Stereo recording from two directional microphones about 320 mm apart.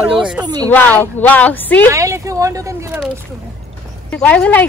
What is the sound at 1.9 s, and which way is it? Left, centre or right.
Speech, centre.